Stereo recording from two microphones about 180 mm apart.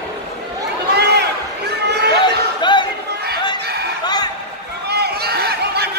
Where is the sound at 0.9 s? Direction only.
70° right (ahead or behind).